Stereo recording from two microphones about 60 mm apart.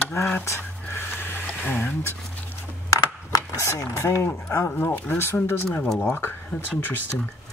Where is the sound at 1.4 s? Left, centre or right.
Left.